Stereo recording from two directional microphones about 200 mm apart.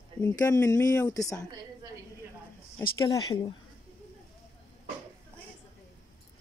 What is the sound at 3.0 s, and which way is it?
Speech, 20° left (ahead or behind).